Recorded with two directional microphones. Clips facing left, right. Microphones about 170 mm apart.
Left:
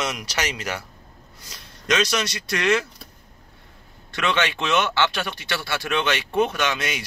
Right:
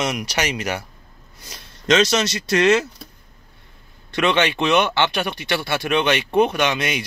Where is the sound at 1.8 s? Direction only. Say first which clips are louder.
Right 5 dB; 25° right (ahead or behind).